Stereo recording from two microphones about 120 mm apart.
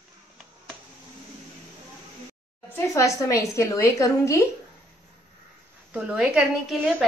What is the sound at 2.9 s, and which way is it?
A woman's voice, 25° left (ahead or behind).